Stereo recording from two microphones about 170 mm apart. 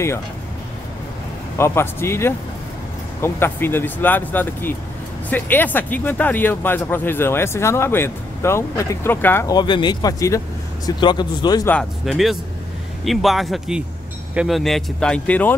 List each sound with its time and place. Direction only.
1.6 s speech: 15° left (ahead or behind)
9.6 s speech: 25° left (ahead or behind)
11.7 s speech: centre (ahead or behind)